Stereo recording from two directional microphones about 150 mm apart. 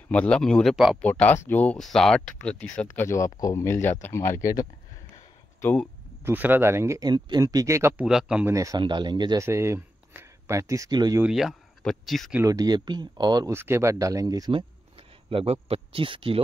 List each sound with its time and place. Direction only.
0.1 s speech: 5° left (ahead or behind)
1.0 s speech: 10° left (ahead or behind)
3.1 s speech: 20° left (ahead or behind)
5.1 s a sound: 15° left (ahead or behind)
6.2 s speech: 15° right (ahead or behind)
8.0 s speech: 5° right (ahead or behind)
8.5 s speech: 20° right (ahead or behind)
9.4 s speech: 20° right (ahead or behind)
11.2 s speech: 5° right (ahead or behind)
12.4 s speech: 25° right (ahead or behind)
15.2 s speech: 40° right (ahead or behind)